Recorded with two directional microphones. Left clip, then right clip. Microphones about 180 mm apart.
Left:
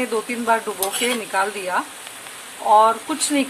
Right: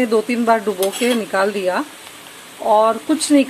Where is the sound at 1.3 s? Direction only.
15° right (ahead or behind).